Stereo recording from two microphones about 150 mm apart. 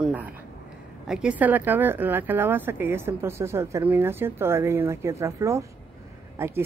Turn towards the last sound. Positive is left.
turn(degrees=-15)  # may be behind; listen again after turning